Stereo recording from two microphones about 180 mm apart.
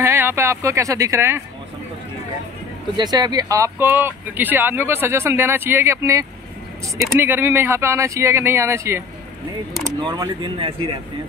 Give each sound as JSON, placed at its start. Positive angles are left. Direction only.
{"t": 0.0, "sound": "speech", "side_deg": -15}
{"t": 3.0, "sound": "speech", "side_deg": -20}
{"t": 10.0, "sound": "speech", "side_deg": -25}